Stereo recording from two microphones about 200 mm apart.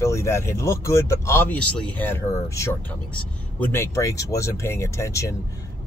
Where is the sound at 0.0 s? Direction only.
15° left (ahead or behind).